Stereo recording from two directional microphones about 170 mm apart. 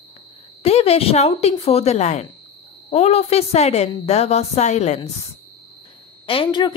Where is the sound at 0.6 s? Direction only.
35° left (ahead or behind).